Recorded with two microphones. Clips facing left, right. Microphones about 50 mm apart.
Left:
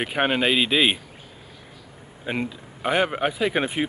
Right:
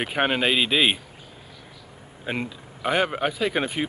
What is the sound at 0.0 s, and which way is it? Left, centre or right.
Speech, centre.